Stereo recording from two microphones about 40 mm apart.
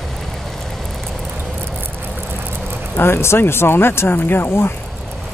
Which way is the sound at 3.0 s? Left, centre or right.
Left.